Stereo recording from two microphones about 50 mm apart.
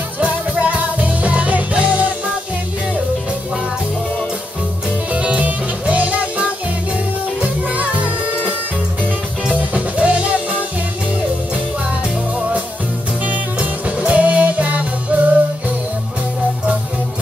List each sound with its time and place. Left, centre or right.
0.2 s music: right
5.1 s music: right
13.2 s music: right